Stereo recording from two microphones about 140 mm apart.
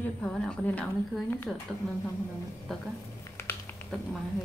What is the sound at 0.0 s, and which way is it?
Speech, 5° left (ahead or behind).